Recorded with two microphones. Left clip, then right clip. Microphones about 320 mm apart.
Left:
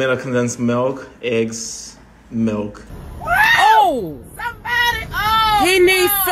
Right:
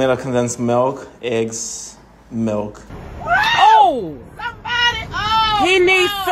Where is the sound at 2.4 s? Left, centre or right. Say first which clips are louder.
Right 1 dB; centre.